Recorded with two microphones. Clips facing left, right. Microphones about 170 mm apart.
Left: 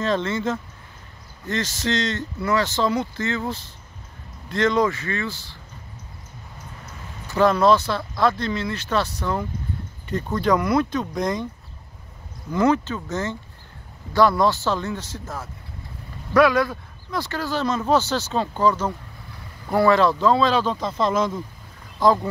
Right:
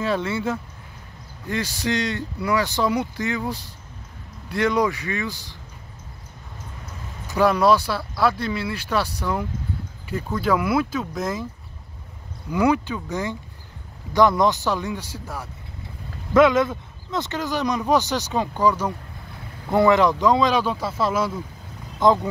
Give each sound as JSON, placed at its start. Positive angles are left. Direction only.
{"t": 0.0, "sound": "speech", "side_deg": -10}
{"t": 7.2, "sound": "speech", "side_deg": -10}
{"t": 12.4, "sound": "speech", "side_deg": -10}
{"t": 22.0, "sound": "speech", "side_deg": -20}